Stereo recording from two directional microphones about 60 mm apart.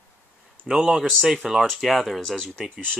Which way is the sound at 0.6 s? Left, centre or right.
Centre.